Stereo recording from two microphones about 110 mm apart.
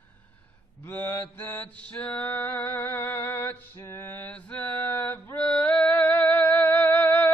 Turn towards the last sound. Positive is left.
turn(degrees=15)  # may be behind; listen again after turning